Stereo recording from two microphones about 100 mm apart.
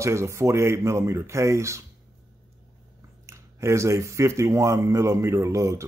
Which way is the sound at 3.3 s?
30° right (ahead or behind).